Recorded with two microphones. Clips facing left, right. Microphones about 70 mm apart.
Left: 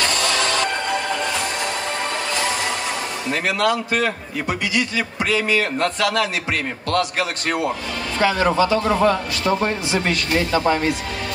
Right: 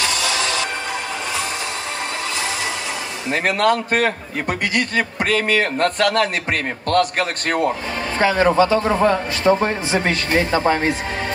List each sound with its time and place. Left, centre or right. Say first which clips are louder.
0.0 s music: left 1 dB; left
3.3 s a man's voice: right 3 dB; right
8.2 s a man's voice: right 2 dB; right